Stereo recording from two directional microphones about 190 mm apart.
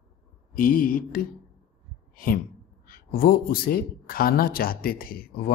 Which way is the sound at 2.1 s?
50° left (ahead or behind).